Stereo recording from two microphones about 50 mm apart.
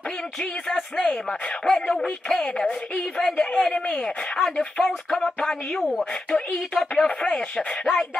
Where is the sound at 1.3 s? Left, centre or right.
Centre.